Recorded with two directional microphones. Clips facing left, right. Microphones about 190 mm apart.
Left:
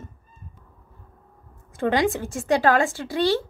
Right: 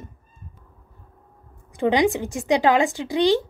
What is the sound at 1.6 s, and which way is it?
A woman's voice, 15° right (ahead or behind).